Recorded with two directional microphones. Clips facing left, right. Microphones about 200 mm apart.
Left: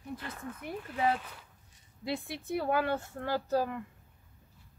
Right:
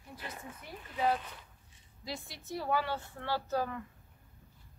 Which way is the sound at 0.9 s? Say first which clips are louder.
Left 1 dB; 5° left (ahead or behind).